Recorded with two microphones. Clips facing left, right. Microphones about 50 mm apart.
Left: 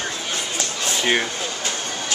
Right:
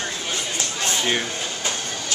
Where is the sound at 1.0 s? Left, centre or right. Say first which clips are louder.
Left 5 dB; left.